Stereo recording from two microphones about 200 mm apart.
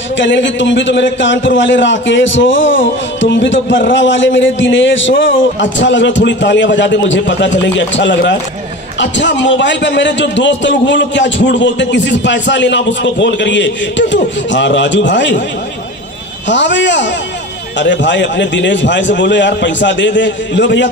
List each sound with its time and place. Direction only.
0.2 s a man's voice: 70° left (ahead or behind)
16.4 s a man's voice: 65° left (ahead or behind)